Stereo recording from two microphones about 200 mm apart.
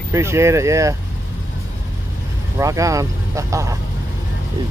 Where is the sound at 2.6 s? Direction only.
15° right (ahead or behind).